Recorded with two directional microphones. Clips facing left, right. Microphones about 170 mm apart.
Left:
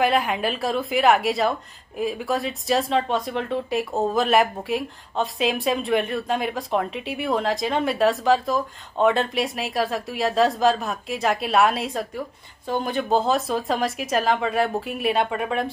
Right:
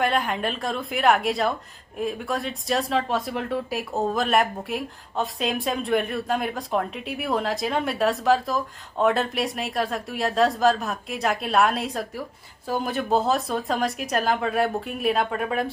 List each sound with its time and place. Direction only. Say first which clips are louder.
0.0 s speech: left 3 dB; 5° left (ahead or behind)